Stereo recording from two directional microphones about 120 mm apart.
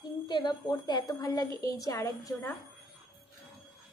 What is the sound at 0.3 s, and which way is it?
A woman's voice, 35° left (ahead or behind).